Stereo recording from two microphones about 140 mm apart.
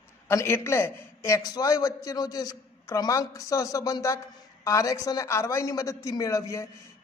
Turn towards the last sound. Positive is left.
turn(degrees=20)  # may be behind; listen again after turning